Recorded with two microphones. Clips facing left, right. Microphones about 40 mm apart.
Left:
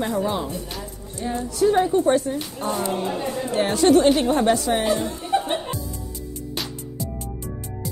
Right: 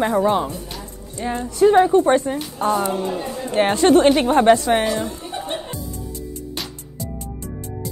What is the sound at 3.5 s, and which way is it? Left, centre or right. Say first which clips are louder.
A woman's voice: right 3 dB; right.